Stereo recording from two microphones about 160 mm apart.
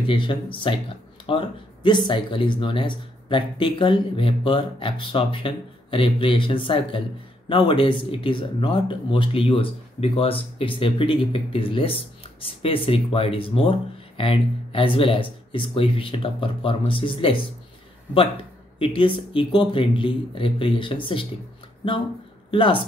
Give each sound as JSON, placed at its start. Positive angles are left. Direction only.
{"t": 0.0, "sound": "speech", "side_deg": 30}
{"t": 18.8, "sound": "speech", "side_deg": 35}